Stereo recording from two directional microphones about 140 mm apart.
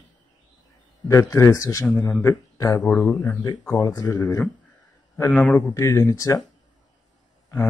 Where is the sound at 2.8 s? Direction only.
10° left (ahead or behind).